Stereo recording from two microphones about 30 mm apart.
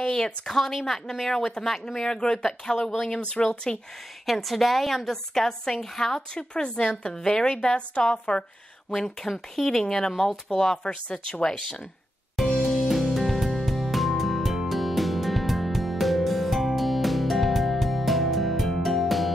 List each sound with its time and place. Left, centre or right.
0.0 s a woman's voice: centre
2.0 s a woman's voice: left
3.2 s speech: left
4.3 s a woman's voice: centre
6.3 s speech: left
7.2 s speech: left
8.1 s speech: left
8.9 s a woman's voice: centre
10.8 s speech: left
12.4 s music: centre